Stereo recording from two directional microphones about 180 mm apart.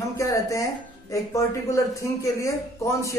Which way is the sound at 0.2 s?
20° left (ahead or behind).